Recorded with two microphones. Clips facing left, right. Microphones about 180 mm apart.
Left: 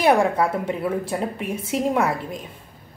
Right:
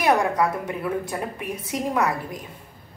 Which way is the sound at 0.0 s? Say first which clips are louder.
Left 2 dB; 30° left (ahead or behind).